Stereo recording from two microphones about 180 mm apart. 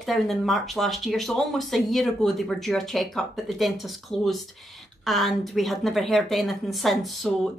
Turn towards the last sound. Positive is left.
turn(degrees=0)  # may be behind; listen again after turning